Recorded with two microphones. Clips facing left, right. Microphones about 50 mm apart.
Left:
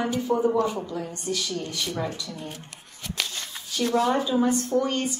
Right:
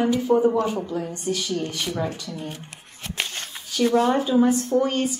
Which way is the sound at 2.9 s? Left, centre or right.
Right.